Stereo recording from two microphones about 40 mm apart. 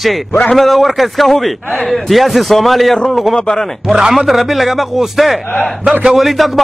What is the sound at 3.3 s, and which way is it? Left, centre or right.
Speech, centre.